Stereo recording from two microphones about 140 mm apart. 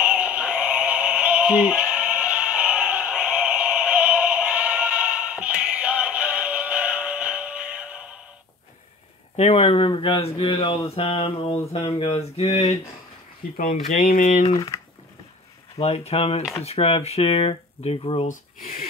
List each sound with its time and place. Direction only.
0.0 s synthetic singing: 10° right (ahead or behind)
9.4 s speech: 55° left (ahead or behind)
13.6 s speech: 90° left; by 14.4 s 75° left (ahead or behind)
14.5 s speech: 30° left (ahead or behind)
15.8 s speech: 50° left (ahead or behind)
18.3 s speech: 80° left